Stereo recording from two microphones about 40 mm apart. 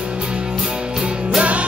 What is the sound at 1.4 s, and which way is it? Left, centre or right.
Music, right.